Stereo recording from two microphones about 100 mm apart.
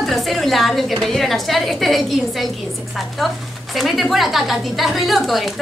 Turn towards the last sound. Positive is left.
turn(degrees=0)  # may be behind; listen again after turning